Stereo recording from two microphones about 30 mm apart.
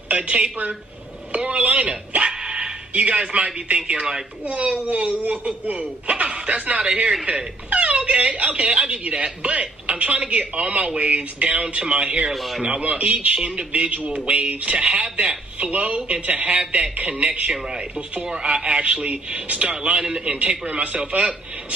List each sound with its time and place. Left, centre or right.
0.1 s a woman's voice: right
1.3 s telephone: right
1.6 s speech: right
2.4 s dog: right
2.9 s speech: right
7.7 s wail: right
8.1 s speech: right
12.4 s speech: centre
12.8 s speech: right
18.2 s a man's voice: right
20.0 s a man's voice: right
20.3 s speech: right
21.1 s a man's voice: right